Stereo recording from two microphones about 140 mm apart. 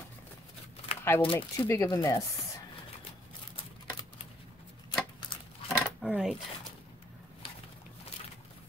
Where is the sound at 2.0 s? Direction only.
20° left (ahead or behind).